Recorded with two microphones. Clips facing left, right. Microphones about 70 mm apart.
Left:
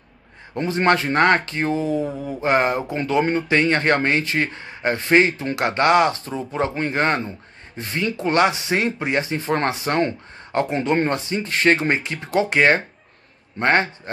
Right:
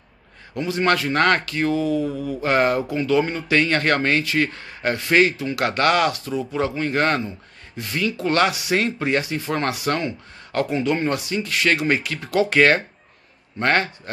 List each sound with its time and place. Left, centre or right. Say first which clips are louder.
0.6 s speech: left 2 dB; left